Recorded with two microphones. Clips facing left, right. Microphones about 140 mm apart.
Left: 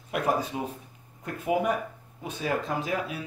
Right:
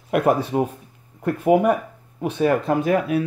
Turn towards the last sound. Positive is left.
turn(degrees=-60)  # may be behind; listen again after turning